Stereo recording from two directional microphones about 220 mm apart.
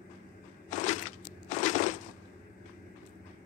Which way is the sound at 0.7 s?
35° left (ahead or behind).